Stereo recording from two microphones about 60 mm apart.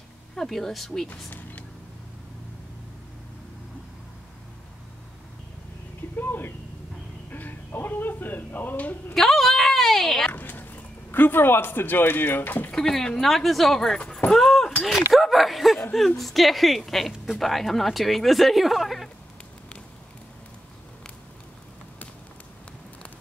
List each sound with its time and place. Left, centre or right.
0.4 s speech: centre
1.1 s speech: left
6.1 s a sound: left
9.1 s a sound: centre
10.3 s speech: left
12.7 s speech: centre
14.3 s keys jangling: centre
15.1 s speech: centre